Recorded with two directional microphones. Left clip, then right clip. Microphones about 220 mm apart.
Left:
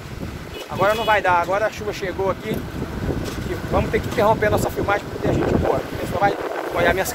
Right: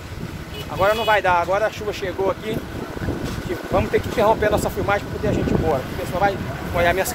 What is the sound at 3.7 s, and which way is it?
Speech, centre (ahead or behind).